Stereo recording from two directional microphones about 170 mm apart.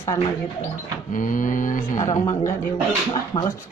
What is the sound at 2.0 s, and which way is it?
Speech, 20° left (ahead or behind).